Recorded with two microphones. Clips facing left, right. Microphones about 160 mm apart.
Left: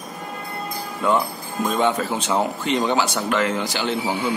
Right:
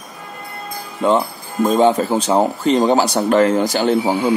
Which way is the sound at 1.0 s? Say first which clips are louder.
Right 5 dB; 25° right (ahead or behind).